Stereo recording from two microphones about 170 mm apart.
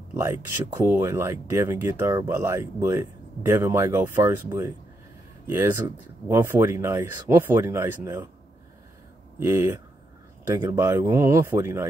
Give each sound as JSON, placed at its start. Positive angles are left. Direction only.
{"t": 0.1, "sound": "speech", "side_deg": -15}
{"t": 9.4, "sound": "speech", "side_deg": -15}